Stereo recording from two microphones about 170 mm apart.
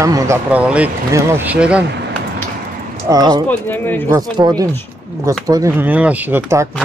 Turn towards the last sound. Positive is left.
turn(degrees=-10)  # may be behind; listen again after turning